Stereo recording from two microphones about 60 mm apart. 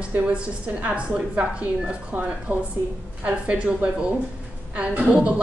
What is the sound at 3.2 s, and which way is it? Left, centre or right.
A woman's voice, right.